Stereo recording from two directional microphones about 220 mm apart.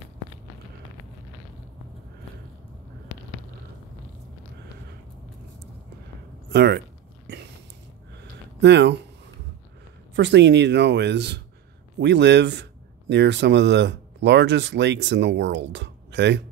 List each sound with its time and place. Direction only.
6.5 s speech: 45° right (ahead or behind)
7.3 s a sound: 50° right (ahead or behind)
8.5 s speech: 50° right (ahead or behind)
10.1 s speech: 55° right (ahead or behind)